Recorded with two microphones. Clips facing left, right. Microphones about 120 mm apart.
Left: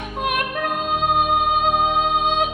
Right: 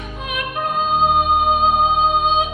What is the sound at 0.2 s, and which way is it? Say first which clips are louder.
Music: left 2 dB; 60° left (ahead or behind).